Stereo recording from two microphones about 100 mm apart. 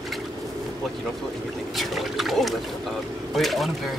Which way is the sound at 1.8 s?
Centre (ahead or behind).